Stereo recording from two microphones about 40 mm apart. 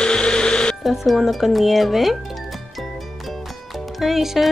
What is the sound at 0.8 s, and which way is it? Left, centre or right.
Speech, centre.